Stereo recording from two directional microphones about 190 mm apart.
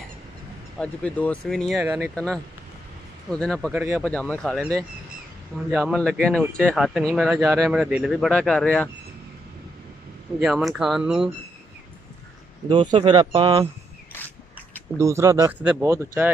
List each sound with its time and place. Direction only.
0.7 s speech: 5° left (ahead or behind)
1.8 s speech: 10° right (ahead or behind)
2.1 s speech: 5° left (ahead or behind)
3.7 s speech: 10° right (ahead or behind)
4.0 s speech: 5° left (ahead or behind)
5.7 s speech: 5° right (ahead or behind)
10.4 s speech: centre (ahead or behind)
12.6 s speech: 25° right (ahead or behind)
15.0 s speech: 15° right (ahead or behind)